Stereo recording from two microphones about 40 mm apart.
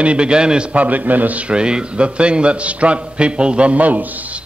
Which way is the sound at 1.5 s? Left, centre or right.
Right.